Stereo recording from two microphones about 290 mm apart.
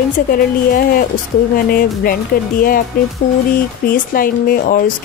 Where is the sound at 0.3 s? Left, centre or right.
Left.